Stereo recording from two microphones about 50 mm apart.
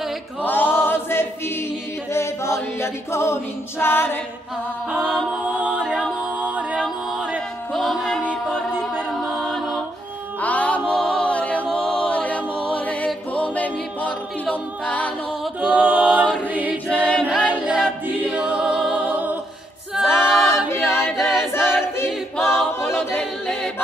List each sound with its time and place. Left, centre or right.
0.4 s choir: left
2.8 s a capella: left
3.8 s a capella: left
5.6 s a capella: right
7.7 s music: centre
9.2 s music: centre
10.4 s music: left
11.0 s a capella: centre
11.2 s a capella: left
15.6 s a capella: right
17.4 s choir: right
19.0 s music: right
20.0 s choir: centre
22.4 s a capella: centre